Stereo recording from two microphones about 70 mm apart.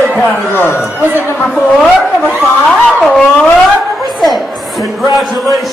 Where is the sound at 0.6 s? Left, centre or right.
Left.